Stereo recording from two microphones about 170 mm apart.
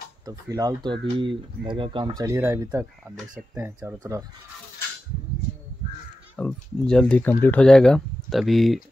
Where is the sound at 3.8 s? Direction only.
20° right (ahead or behind).